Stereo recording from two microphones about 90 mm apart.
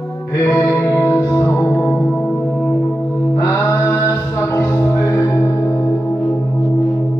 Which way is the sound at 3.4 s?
30° left (ahead or behind).